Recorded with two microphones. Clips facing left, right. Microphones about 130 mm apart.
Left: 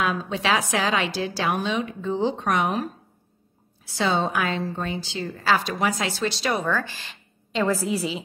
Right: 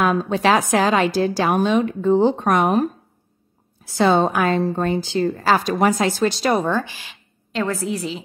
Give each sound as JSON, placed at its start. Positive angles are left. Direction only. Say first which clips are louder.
{"t": 0.0, "sound": "a woman's voice", "louder": "right 7 dB", "side_deg": -45}
{"t": 6.7, "sound": "speech", "louder": "right 4 dB", "side_deg": -15}
{"t": 7.5, "sound": "a woman's voice", "louder": "even", "side_deg": 0}